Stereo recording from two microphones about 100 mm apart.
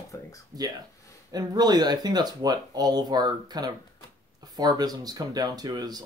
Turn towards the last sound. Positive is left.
turn(degrees=-40)  # may be behind; listen again after turning